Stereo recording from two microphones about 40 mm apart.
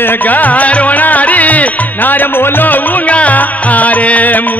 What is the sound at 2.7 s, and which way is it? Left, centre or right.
Music, left.